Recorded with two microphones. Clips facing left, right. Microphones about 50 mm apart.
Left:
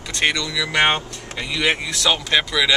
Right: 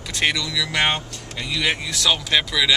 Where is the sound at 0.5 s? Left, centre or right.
Left; by 2.7 s centre.